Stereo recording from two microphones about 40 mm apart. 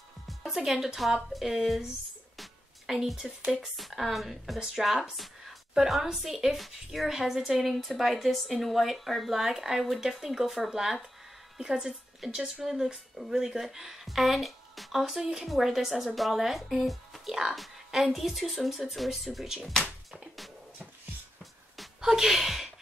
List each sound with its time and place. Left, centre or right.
0.5 s a woman's voice: centre
2.3 s music: centre
3.5 s a woman's voice: centre
11.6 s a woman's voice: right; by 17.2 s centre
17.3 s speech: centre
20.1 s music: centre
22.0 s speech: centre